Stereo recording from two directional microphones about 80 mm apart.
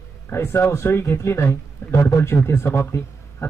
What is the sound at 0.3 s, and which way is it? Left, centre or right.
Speech, left.